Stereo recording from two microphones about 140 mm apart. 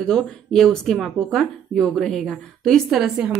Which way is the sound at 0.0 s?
5° left (ahead or behind).